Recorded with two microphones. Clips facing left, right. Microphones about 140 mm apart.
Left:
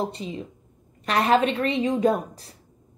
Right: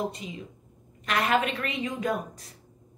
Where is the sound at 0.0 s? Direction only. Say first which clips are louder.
Left 4 dB; 30° left (ahead or behind).